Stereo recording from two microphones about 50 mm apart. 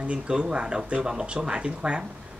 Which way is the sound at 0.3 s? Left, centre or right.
Centre.